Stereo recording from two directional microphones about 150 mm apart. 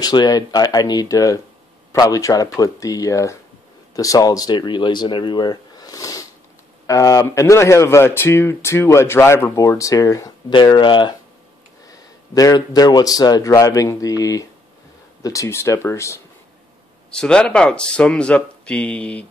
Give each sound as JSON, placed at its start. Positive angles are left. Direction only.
{"t": 0.0, "sound": "speech", "side_deg": 25}
{"t": 17.1, "sound": "speech", "side_deg": 5}